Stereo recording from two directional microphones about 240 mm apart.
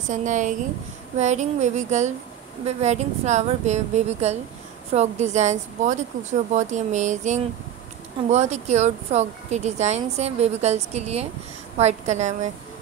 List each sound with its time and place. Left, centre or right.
0.1 s speech: right